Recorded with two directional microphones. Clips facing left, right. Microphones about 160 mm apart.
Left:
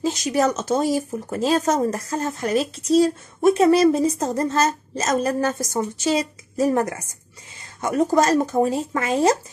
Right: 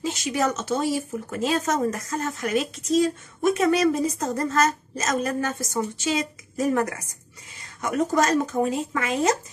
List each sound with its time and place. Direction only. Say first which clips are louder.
0.0 s speech: left 4 dB; 35° left (ahead or behind)